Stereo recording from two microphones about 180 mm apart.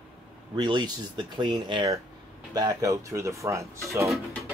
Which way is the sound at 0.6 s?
25° right (ahead or behind).